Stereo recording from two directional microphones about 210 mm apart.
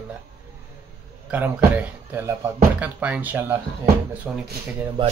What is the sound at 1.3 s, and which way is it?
Speech, 5° right (ahead or behind).